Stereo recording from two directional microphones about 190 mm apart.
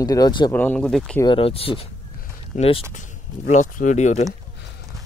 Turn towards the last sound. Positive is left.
turn(degrees=40)  # may be behind; listen again after turning